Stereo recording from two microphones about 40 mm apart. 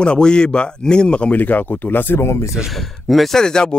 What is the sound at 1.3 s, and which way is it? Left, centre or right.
Speech, left.